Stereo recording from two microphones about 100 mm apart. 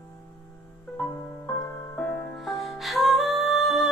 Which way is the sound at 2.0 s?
20° left (ahead or behind).